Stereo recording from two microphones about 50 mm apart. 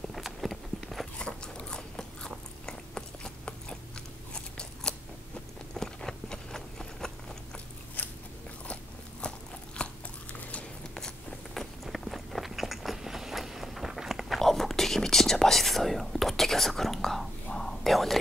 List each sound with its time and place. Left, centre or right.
0.1 s a sound: centre
1.1 s biting: centre
5.8 s a sound: centre
9.8 s biting: left
11.0 s biting: centre
11.8 s biting: centre
17.6 s whispering: centre